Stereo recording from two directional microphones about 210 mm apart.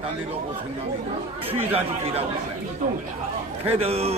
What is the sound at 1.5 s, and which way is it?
Speech, 25° right (ahead or behind).